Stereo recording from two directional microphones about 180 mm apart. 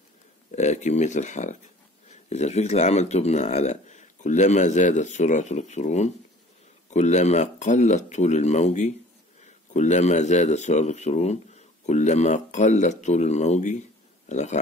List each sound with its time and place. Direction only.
0.5 s speech: 40° left (ahead or behind)